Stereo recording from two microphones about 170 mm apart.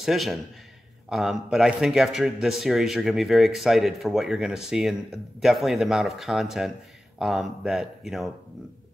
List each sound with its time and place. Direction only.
0.0 s a man's voice: centre (ahead or behind)